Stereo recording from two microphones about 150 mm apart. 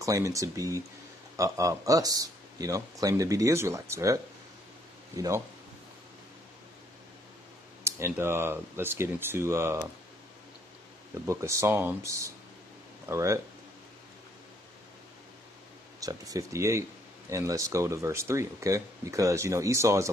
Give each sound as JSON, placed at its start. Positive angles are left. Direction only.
{"t": 0.0, "sound": "speech", "side_deg": -20}
{"t": 7.8, "sound": "speech", "side_deg": -15}
{"t": 11.2, "sound": "speech", "side_deg": -20}
{"t": 16.0, "sound": "speech", "side_deg": -25}